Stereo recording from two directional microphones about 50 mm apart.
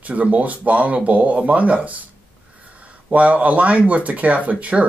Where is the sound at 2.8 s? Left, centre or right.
Right.